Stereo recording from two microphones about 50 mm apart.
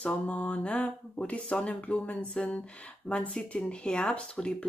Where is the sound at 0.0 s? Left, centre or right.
Left.